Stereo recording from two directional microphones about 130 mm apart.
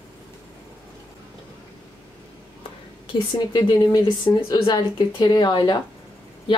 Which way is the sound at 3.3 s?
35° left (ahead or behind).